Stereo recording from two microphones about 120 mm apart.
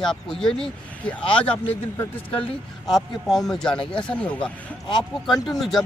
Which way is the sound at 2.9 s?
Centre (ahead or behind).